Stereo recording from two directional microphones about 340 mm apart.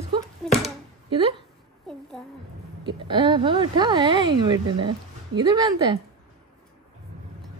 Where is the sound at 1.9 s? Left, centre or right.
Centre.